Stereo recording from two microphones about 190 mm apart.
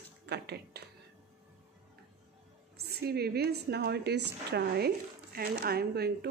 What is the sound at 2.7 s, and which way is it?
A woman's voice, 55° right (ahead or behind).